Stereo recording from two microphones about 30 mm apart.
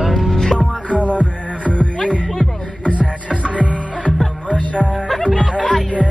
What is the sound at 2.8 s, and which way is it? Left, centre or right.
Music, left.